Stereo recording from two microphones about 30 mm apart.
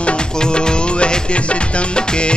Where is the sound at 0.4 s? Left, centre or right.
Left.